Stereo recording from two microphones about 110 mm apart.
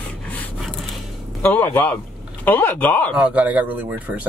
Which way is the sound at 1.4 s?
15° left (ahead or behind).